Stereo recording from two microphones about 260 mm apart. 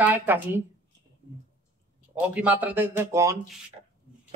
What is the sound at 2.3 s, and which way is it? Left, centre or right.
Speech, centre.